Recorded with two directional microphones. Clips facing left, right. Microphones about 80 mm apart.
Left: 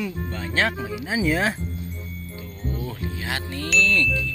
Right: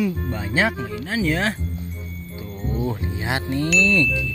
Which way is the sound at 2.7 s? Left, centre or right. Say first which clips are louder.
Right 6 dB; right.